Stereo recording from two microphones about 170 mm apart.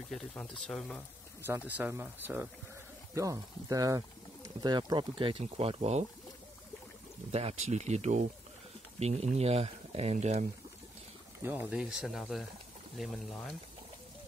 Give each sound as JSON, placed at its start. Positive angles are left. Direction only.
{"t": 0.1, "sound": "speech", "side_deg": 5}
{"t": 1.7, "sound": "speech", "side_deg": -10}
{"t": 7.2, "sound": "speech", "side_deg": -35}
{"t": 11.4, "sound": "speech", "side_deg": -10}